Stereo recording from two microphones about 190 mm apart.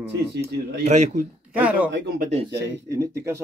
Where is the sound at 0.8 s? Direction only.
35° right (ahead or behind).